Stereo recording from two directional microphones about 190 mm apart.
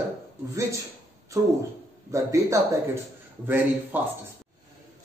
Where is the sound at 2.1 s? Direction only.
15° right (ahead or behind).